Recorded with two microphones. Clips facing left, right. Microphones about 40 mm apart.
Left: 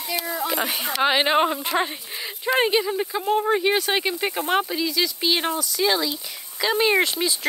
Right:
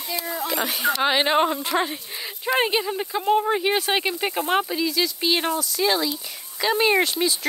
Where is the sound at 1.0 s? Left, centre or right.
Centre.